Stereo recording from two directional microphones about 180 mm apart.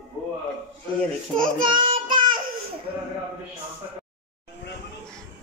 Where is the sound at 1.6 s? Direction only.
30° right (ahead or behind).